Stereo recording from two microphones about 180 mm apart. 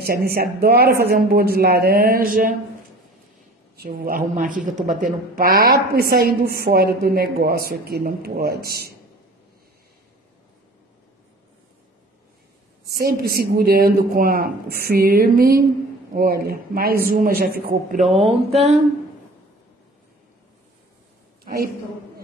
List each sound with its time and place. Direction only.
0.0 s a woman's voice: 55° right (ahead or behind)
3.7 s a woman's voice: 55° right (ahead or behind)
12.9 s a woman's voice: 60° right (ahead or behind)
18.1 s a sound: 35° right (ahead or behind)